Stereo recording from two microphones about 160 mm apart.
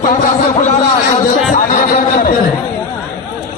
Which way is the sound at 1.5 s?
60° left (ahead or behind).